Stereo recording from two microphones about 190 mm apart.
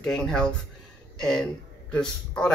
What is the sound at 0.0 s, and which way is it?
Speech, 5° left (ahead or behind).